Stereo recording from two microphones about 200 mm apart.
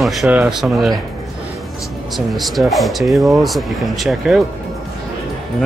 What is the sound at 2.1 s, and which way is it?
Speech, centre (ahead or behind).